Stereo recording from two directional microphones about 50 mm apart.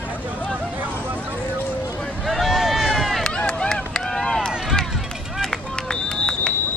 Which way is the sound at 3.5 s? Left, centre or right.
Centre.